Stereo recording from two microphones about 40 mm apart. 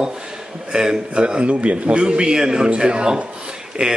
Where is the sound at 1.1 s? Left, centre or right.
Right.